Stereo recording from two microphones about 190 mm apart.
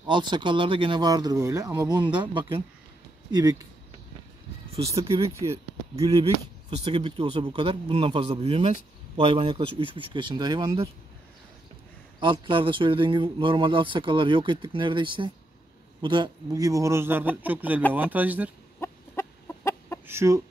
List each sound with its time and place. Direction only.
0.0 s a man's voice: 25° right (ahead or behind)
4.7 s speech: 30° right (ahead or behind)
5.1 s speech: 15° right (ahead or behind)
6.8 s a man's voice: 30° right (ahead or behind)
12.2 s a man's voice: 25° right (ahead or behind); by 18.5 s 10° right (ahead or behind)
18.8 s chicken: 15° left (ahead or behind)
20.1 s a man's voice: 15° right (ahead or behind)